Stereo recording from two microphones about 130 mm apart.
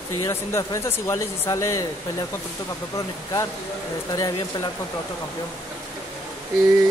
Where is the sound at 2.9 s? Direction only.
25° left (ahead or behind).